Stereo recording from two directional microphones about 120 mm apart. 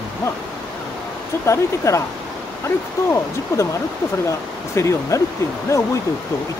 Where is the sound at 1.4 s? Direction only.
25° left (ahead or behind).